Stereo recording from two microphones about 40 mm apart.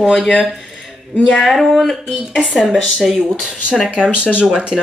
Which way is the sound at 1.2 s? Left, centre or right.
Centre.